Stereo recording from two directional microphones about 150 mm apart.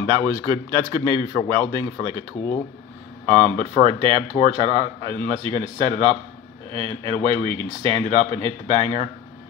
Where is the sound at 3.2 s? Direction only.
35° right (ahead or behind).